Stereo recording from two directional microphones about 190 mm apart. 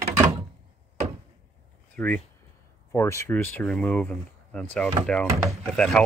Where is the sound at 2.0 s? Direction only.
10° left (ahead or behind).